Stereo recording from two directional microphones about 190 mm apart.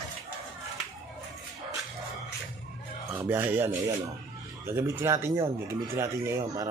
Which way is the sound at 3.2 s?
10° right (ahead or behind).